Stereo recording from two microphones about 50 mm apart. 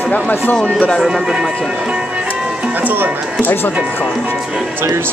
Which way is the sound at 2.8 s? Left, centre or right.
Right.